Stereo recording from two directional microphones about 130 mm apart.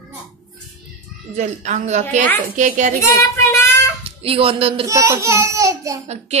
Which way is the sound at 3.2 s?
25° left (ahead or behind).